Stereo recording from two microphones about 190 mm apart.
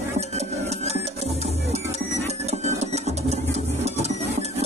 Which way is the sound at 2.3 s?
35° right (ahead or behind).